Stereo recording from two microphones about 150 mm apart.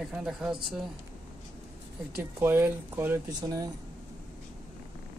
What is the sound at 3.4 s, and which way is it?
Speech, 25° right (ahead or behind).